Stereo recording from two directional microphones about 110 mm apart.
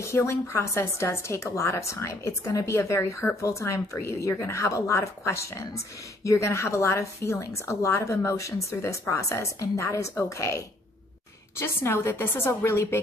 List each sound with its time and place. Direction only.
0.0 s a woman's voice: 25° left (ahead or behind)